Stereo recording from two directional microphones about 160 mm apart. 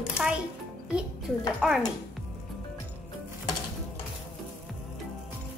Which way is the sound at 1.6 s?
5° right (ahead or behind).